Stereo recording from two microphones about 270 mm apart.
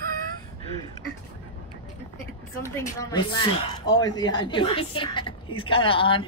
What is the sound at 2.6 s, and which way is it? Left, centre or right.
A woman's voice, centre.